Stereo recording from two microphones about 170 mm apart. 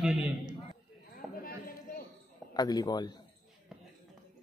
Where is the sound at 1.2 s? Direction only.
Centre (ahead or behind).